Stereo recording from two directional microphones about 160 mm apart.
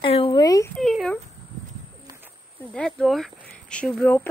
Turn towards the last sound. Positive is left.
turn(degrees=10)  # may be behind; listen again after turning